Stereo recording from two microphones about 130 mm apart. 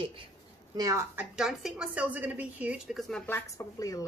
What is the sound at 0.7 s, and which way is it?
Speech, 30° right (ahead or behind).